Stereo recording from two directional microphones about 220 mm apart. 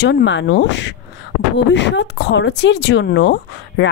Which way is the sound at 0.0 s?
55° left (ahead or behind).